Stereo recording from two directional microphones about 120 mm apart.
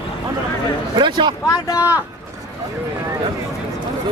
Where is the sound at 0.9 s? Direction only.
40° right (ahead or behind).